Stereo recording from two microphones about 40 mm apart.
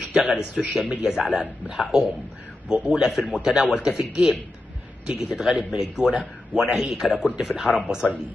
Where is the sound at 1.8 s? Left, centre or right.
Centre.